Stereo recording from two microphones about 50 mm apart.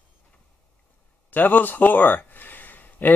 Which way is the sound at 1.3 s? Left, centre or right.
Left.